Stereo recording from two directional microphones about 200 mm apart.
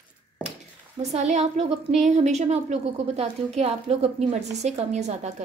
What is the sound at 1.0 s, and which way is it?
A woman's voice, 35° right (ahead or behind).